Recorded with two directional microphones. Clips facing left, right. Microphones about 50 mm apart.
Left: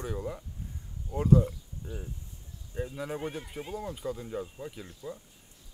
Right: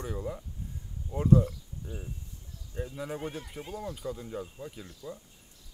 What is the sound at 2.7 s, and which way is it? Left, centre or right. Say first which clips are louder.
Speech: left 1 dB; centre.